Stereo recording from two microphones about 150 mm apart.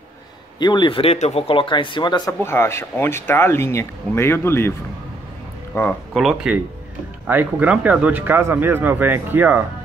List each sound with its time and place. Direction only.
0.6 s speech: 30° left (ahead or behind)
2.4 s speech: 15° left (ahead or behind)
5.7 s speech: 20° left (ahead or behind)
6.1 s speech: 5° right (ahead or behind)